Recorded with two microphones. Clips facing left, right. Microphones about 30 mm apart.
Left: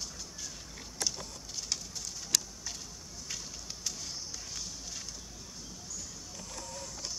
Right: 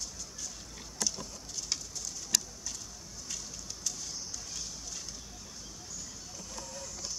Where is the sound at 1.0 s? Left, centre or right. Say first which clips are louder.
Even; centre.